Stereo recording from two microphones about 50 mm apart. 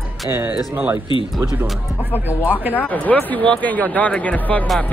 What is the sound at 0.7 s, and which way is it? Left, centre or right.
Speech, right.